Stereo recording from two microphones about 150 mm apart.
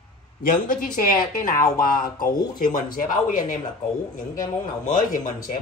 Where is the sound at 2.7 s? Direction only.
60° left (ahead or behind).